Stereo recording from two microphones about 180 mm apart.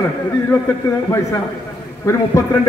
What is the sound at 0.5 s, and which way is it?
A man's voice, 15° left (ahead or behind).